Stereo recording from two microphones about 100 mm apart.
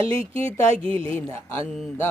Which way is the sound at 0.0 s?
70° right (ahead or behind).